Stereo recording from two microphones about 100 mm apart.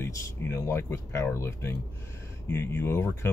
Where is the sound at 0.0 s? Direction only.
30° left (ahead or behind).